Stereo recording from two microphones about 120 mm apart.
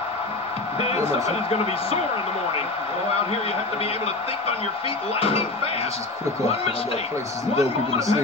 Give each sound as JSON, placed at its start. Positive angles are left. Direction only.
{"t": 0.7, "sound": "speech", "side_deg": 60}
{"t": 7.5, "sound": "speech", "side_deg": 60}